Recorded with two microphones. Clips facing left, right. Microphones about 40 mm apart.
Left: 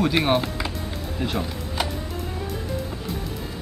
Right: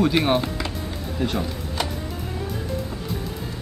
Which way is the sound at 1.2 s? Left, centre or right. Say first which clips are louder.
Right 2 dB; centre.